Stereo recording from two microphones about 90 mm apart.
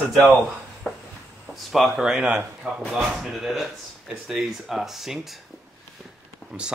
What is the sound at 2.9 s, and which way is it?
Speech, 5° right (ahead or behind).